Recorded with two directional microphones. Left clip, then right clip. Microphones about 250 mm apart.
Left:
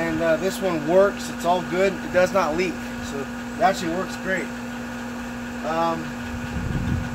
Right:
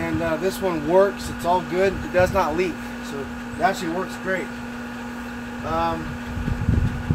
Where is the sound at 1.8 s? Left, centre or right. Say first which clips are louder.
Even; centre.